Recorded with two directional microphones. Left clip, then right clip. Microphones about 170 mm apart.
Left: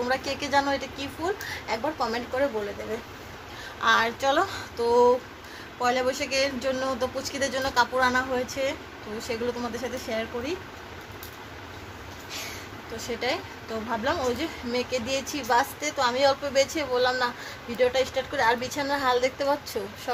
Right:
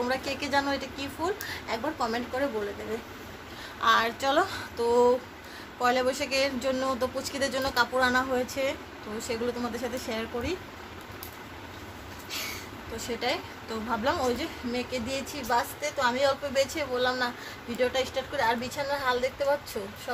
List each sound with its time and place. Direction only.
0.0 s speech: centre (ahead or behind)
3.8 s a woman's voice: centre (ahead or behind)
12.9 s a woman's voice: centre (ahead or behind)
14.7 s speech: 30° left (ahead or behind)
16.0 s a woman's voice: 20° left (ahead or behind)
18.3 s speech: 30° left (ahead or behind)